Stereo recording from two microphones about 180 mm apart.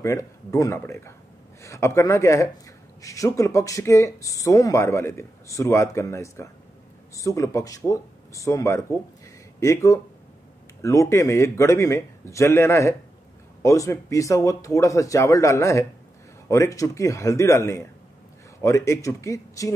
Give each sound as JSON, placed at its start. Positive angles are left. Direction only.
{"t": 0.0, "sound": "speech", "side_deg": 15}